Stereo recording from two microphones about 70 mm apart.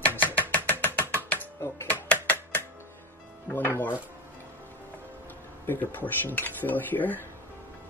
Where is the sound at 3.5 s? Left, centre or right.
Left.